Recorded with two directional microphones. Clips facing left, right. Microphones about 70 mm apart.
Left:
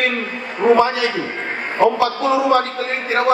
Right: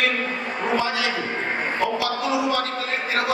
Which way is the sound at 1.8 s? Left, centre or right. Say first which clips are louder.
Left 11 dB; left.